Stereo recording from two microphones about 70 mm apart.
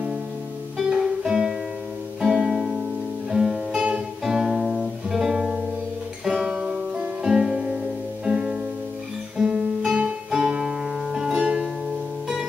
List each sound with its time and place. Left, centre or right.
0.7 s music: centre
6.2 s guitar: centre
8.3 s music: centre
9.4 s guitar: centre